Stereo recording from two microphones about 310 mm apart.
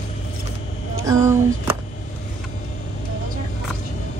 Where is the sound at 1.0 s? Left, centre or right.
Centre.